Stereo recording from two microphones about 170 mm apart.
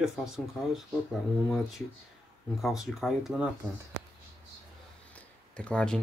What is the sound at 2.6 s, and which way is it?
Speech, centre (ahead or behind).